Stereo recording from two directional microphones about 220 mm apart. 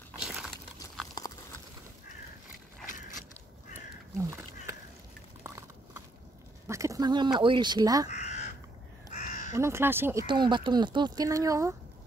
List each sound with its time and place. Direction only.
0.2 s crumpling: 5° right (ahead or behind)
1.2 s a sound: 20° left (ahead or behind)
3.7 s crow: 10° right (ahead or behind)
5.4 s a sound: 10° right (ahead or behind)
6.7 s speech: 15° right (ahead or behind)
8.1 s crow: 30° left (ahead or behind)
9.5 s speech: 10° right (ahead or behind)
10.2 s speech: 20° right (ahead or behind)